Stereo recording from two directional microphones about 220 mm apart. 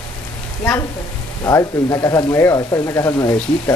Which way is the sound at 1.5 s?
15° left (ahead or behind).